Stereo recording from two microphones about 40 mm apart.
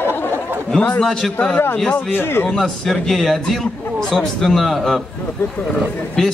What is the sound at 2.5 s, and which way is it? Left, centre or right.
A man's voice, centre.